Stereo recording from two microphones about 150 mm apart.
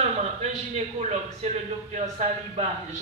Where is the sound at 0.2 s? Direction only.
45° right (ahead or behind).